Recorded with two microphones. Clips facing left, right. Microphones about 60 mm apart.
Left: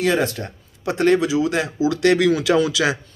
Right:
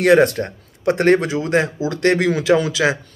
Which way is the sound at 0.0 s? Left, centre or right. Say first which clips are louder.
Right 7 dB; right.